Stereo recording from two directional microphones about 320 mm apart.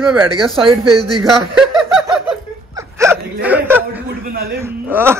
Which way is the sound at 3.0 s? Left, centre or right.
Centre.